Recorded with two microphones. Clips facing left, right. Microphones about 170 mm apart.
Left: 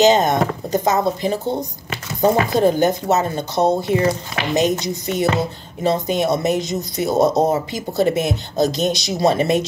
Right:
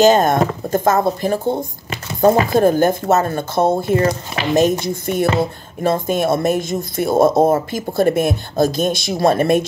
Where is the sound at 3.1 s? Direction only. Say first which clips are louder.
Right 2 dB; 50° right (ahead or behind).